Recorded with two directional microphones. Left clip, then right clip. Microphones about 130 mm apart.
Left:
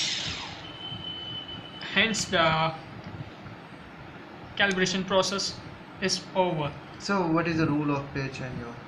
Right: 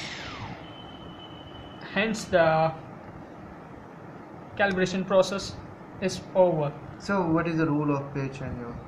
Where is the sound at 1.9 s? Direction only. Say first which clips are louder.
Even; 75° right (ahead or behind).